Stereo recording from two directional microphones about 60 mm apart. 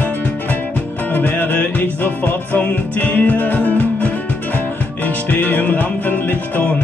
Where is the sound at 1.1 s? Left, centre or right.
Left.